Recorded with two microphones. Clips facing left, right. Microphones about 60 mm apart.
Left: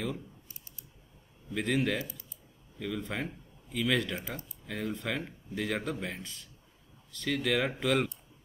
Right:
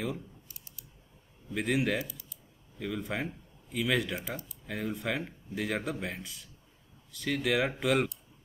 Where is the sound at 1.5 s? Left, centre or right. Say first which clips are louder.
Even; centre.